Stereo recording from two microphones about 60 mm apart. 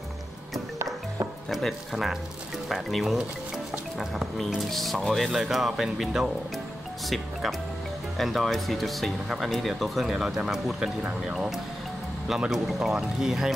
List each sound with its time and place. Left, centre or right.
1.5 s speech: centre
4.6 s speech: centre
8.2 s speech: centre